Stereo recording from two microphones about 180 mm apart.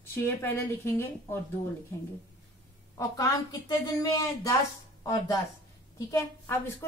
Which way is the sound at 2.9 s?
20° left (ahead or behind).